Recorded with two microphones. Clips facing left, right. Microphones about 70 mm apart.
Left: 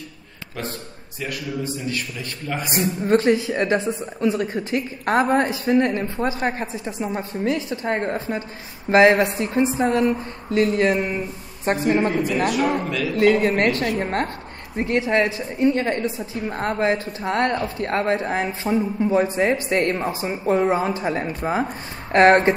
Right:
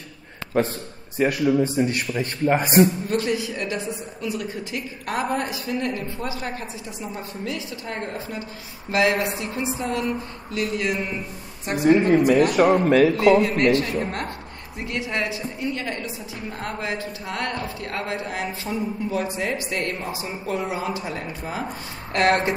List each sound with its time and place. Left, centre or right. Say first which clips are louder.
0.5 s a man's voice: right 8 dB; right
3.1 s speech: left 6 dB; left
12.4 s a man's voice: right 4 dB; right
13.4 s speech: even; left